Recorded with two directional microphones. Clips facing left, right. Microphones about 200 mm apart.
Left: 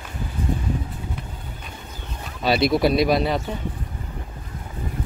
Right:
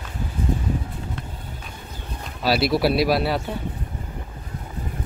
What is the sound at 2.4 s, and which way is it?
Speech, 5° right (ahead or behind).